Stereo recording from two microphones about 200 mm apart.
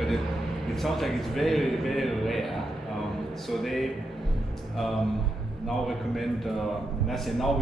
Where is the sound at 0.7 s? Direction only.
Centre (ahead or behind).